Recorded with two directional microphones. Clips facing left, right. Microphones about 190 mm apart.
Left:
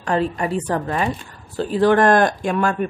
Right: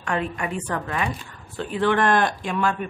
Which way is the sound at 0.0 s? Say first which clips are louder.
Left 6 dB; 35° left (ahead or behind).